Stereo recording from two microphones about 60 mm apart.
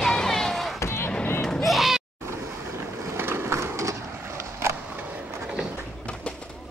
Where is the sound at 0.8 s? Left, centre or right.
Left.